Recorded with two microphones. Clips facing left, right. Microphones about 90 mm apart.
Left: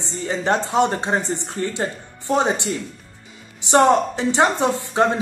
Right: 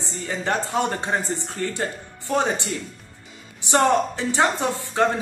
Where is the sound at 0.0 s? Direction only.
20° left (ahead or behind).